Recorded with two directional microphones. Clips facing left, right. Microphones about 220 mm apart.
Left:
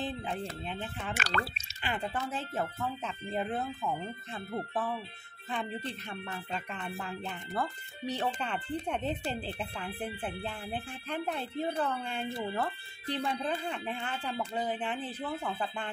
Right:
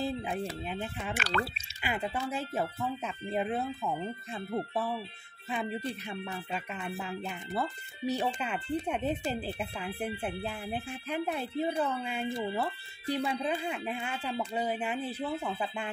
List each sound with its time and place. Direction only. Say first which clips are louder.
0.0 s speech: right 3 dB; 10° right (ahead or behind)
1.1 s speech: right 2 dB; 45° left (ahead or behind)
1.8 s speech: right 1 dB; 10° right (ahead or behind)